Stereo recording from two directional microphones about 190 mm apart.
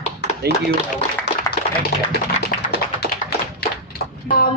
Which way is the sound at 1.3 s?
60° left (ahead or behind).